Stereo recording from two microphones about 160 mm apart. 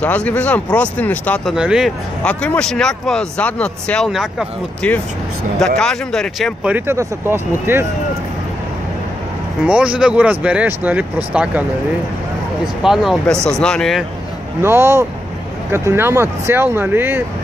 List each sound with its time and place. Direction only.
0.0 s speech: 10° left (ahead or behind)
1.5 s speech: 5° right (ahead or behind)
2.2 s speech: 5° left (ahead or behind)
6.7 s speech: 15° right (ahead or behind)
9.7 s speech: 5° right (ahead or behind)
12.8 s speech: centre (ahead or behind)
14.6 s speech: 15° right (ahead or behind)